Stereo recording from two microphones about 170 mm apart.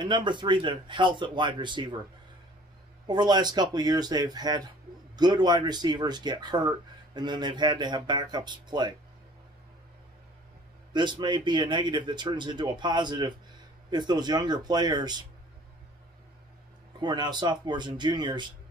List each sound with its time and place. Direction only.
0.0 s a man's voice: 25° right (ahead or behind)
3.1 s a man's voice: 25° right (ahead or behind)
10.9 s a man's voice: 25° right (ahead or behind)
17.0 s a man's voice: 25° right (ahead or behind)